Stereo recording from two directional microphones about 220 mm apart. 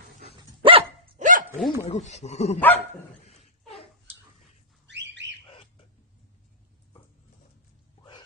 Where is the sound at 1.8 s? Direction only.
30° left (ahead or behind).